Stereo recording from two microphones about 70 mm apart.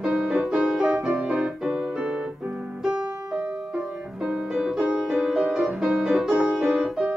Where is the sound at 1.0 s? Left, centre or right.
Centre.